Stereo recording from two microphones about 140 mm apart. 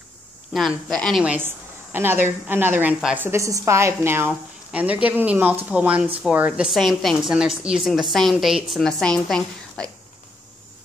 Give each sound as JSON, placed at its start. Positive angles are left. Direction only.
{"t": 0.5, "sound": "a woman's voice", "side_deg": 0}
{"t": 1.2, "sound": "a woman's voice", "side_deg": -10}
{"t": 3.3, "sound": "a woman's voice", "side_deg": -20}